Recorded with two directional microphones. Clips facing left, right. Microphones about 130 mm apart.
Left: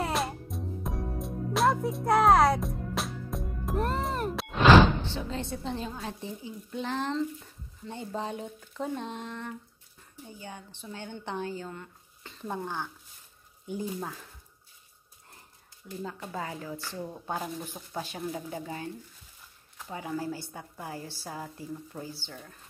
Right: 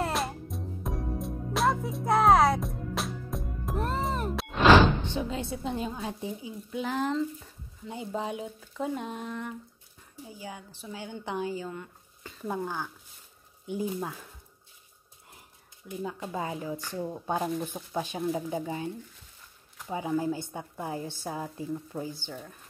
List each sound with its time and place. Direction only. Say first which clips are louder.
0.0 s music: even; centre (ahead or behind)
5.0 s a woman's voice: right 2 dB; 15° right (ahead or behind)
13.9 s a woman's voice: right 2 dB; 10° right (ahead or behind)
15.9 s a woman's voice: right 3 dB; 15° right (ahead or behind)
17.8 s speech: right 5 dB; centre (ahead or behind)
18.3 s a woman's voice: right 5 dB; 20° right (ahead or behind)
19.9 s a woman's voice: right 5 dB; 20° right (ahead or behind)